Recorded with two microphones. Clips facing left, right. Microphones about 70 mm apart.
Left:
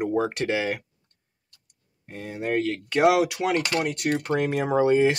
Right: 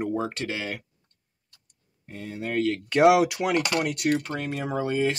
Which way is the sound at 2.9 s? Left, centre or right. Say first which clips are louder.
Right 1 dB; centre.